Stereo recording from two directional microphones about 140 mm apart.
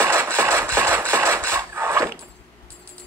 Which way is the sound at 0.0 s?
15° right (ahead or behind).